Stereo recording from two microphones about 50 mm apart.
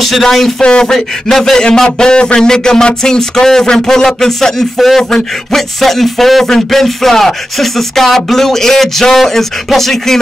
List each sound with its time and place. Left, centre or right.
0.0 s speech: centre
0.6 s a man's voice: centre
0.9 s a man's voice: centre
4.7 s a sound: centre